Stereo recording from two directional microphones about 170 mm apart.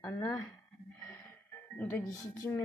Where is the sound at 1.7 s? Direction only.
15° left (ahead or behind).